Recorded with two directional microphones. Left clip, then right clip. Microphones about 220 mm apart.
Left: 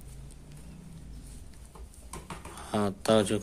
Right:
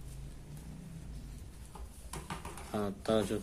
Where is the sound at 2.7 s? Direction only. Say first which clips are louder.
Left 7 dB; 30° left (ahead or behind).